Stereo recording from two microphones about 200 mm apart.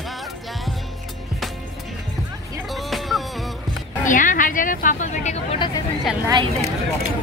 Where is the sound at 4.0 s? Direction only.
40° left (ahead or behind).